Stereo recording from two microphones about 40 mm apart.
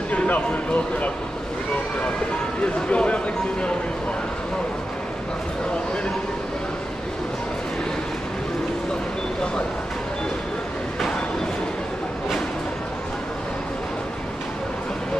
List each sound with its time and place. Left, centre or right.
0.1 s speech: left
2.6 s speech: left